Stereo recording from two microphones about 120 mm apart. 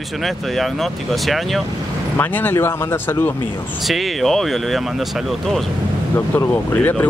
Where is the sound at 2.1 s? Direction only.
15° left (ahead or behind).